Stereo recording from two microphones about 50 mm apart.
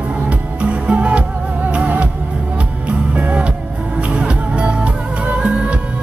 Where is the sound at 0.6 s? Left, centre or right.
Right.